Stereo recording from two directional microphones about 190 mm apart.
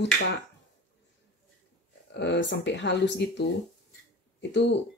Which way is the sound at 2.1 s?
65° left (ahead or behind).